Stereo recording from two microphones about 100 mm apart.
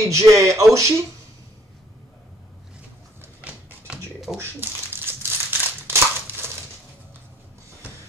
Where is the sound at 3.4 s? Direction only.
15° right (ahead or behind).